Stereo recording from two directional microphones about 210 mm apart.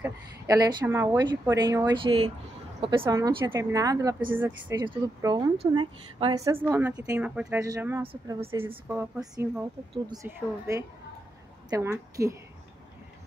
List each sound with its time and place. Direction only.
0.0 s speech: 15° right (ahead or behind)
8.1 s speech: 25° right (ahead or behind)
8.6 s speech: 10° right (ahead or behind)